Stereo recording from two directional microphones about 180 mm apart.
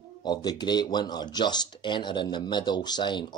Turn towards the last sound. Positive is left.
turn(degrees=25)  # may be behind; listen again after turning